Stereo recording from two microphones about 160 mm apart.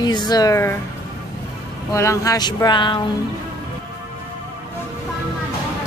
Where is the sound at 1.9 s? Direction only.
20° left (ahead or behind).